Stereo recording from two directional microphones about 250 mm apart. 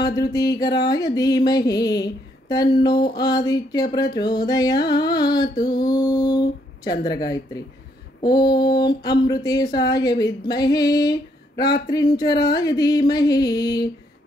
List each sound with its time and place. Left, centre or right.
0.0 s music: centre